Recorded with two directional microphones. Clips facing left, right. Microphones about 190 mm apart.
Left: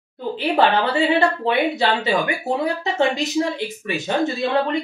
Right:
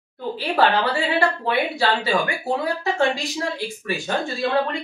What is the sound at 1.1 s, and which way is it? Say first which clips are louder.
Speech: left 3 dB; 20° left (ahead or behind).